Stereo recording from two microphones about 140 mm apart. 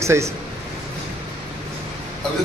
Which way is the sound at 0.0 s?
20° right (ahead or behind).